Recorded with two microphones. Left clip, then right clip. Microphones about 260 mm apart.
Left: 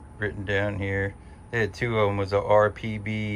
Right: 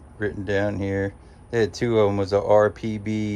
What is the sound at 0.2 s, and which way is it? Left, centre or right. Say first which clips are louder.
Speech: right 3 dB; centre.